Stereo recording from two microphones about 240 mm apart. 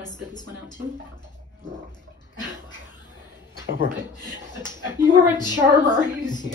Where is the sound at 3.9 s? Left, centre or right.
Centre.